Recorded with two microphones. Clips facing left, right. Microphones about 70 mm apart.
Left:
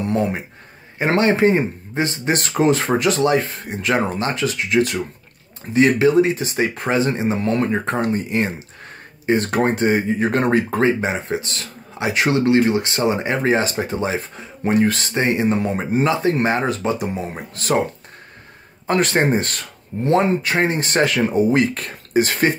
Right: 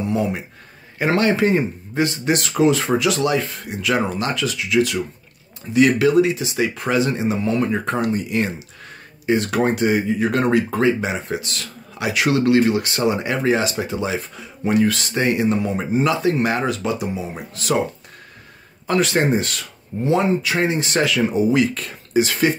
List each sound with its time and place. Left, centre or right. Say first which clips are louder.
0.0 s a sound: left 1 dB; left
0.9 s speech: left 1 dB; left
18.9 s speech: left 1 dB; left